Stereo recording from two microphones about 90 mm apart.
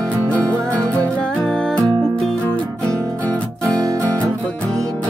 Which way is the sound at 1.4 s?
10° left (ahead or behind).